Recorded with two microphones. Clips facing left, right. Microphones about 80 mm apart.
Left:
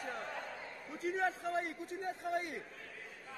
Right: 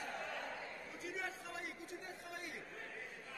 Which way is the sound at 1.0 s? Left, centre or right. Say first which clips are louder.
Left 11 dB; left.